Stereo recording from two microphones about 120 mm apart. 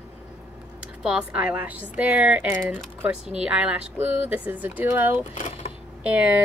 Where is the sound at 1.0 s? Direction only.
10° right (ahead or behind).